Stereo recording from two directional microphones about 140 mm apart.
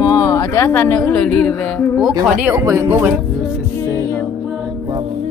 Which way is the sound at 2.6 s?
20° right (ahead or behind).